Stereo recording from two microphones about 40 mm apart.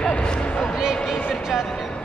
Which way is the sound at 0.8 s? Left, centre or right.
Centre.